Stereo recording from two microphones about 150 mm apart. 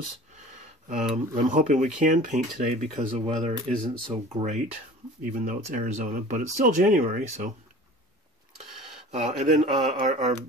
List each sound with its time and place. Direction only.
0.8 s speech: 60° right (ahead or behind)
5.4 s speech: 60° right (ahead or behind)
8.8 s speech: 45° right (ahead or behind)